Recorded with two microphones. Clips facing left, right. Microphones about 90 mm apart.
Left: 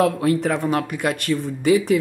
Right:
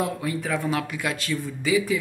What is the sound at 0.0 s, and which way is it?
Speech, 65° left (ahead or behind).